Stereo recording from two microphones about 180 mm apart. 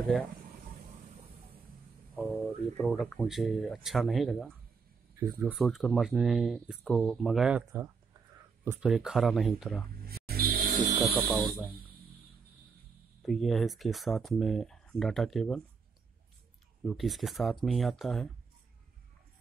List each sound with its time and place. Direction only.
2.1 s speech: 10° left (ahead or behind)
10.0 s music: 60° right (ahead or behind)
11.3 s speech: 5° left (ahead or behind)
13.2 s speech: centre (ahead or behind)
16.8 s speech: centre (ahead or behind)